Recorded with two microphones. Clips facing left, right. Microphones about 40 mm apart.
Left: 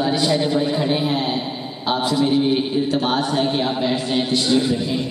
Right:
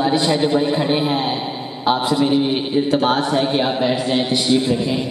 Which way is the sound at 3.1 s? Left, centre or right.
Centre.